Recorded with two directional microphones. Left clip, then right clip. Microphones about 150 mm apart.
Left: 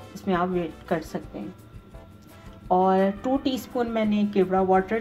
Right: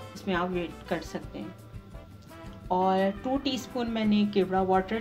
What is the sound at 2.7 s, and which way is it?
Speech, 40° left (ahead or behind).